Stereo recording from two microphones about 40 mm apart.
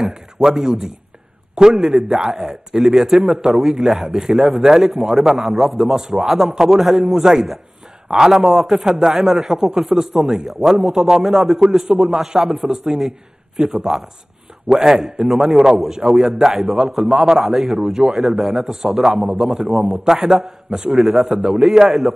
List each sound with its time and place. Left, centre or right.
0.1 s a man's voice: centre
13.6 s a man's voice: right
21.7 s a man's voice: centre